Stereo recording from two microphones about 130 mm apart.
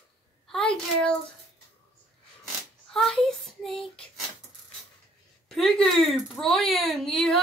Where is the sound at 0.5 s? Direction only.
5° left (ahead or behind).